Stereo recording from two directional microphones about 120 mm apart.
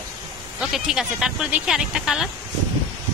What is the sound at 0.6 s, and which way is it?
Speech, 5° right (ahead or behind).